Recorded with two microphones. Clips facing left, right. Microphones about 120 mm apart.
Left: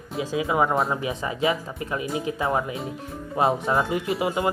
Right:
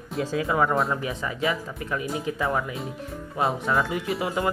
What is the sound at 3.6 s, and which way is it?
Speech, 30° left (ahead or behind).